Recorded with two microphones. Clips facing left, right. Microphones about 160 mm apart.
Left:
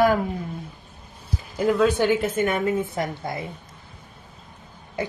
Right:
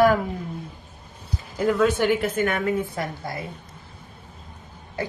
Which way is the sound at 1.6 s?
20° left (ahead or behind).